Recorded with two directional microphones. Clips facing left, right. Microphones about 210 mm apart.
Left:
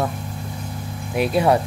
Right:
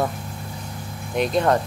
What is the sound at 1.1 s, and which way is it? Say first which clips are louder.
Speech: left 2 dB; 5° left (ahead or behind).